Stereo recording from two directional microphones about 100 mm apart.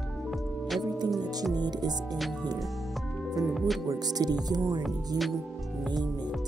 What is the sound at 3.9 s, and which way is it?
Speech, 40° right (ahead or behind).